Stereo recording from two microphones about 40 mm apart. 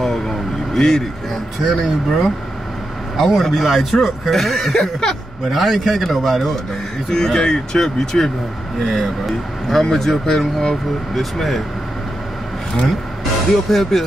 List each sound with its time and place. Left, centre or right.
0.7 s speech: centre
1.6 s speech: centre
8.8 s speech: centre
13.7 s speech: centre